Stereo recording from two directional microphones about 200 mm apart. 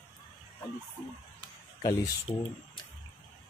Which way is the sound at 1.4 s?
20° left (ahead or behind).